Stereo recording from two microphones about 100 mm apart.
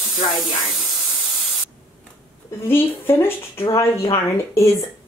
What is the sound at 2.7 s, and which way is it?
A woman's voice, 20° left (ahead or behind).